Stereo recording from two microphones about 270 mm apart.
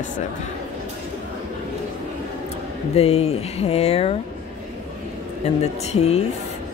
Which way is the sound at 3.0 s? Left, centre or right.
Left.